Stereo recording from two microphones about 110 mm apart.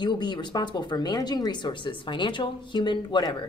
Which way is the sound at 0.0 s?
45° left (ahead or behind).